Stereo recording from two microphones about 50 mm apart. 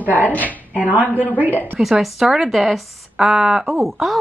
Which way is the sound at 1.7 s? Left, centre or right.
Centre.